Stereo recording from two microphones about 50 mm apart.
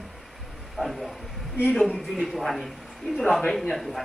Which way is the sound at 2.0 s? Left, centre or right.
Centre.